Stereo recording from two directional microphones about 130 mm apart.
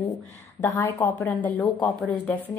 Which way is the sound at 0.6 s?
20° left (ahead or behind).